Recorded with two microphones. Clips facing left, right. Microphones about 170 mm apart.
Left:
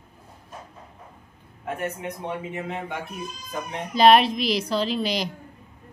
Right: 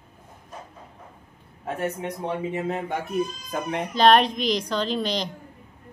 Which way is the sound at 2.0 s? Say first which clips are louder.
Right 3 dB; 35° right (ahead or behind).